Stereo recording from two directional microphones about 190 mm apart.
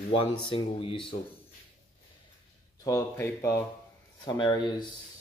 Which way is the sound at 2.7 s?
20° left (ahead or behind).